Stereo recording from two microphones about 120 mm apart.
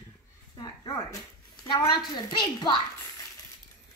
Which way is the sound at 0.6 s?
30° left (ahead or behind).